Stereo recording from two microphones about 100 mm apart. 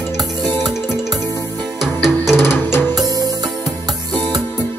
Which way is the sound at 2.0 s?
5° right (ahead or behind).